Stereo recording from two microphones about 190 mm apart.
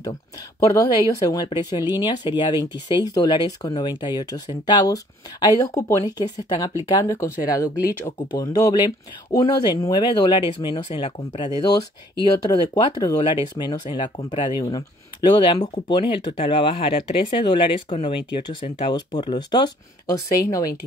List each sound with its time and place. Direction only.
0.8 s speech: 20° left (ahead or behind)
7.7 s speech: 10° right (ahead or behind)
8.2 s speech: 20° left (ahead or behind)